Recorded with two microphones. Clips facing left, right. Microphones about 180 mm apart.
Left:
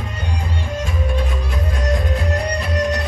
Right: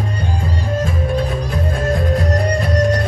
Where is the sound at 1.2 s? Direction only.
35° right (ahead or behind).